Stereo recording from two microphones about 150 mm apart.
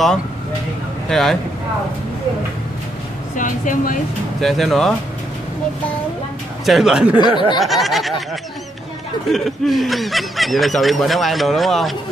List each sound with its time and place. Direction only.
1.0 s speech: centre (ahead or behind)
3.3 s speech: 60° left (ahead or behind)
4.4 s speech: centre (ahead or behind)
6.6 s speech: centre (ahead or behind)
7.2 s speech: 30° left (ahead or behind)
7.5 s speech: centre (ahead or behind)
9.3 s speech: centre (ahead or behind)